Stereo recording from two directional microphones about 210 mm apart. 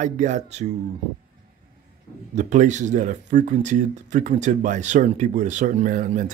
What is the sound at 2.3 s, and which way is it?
Speech, 35° right (ahead or behind).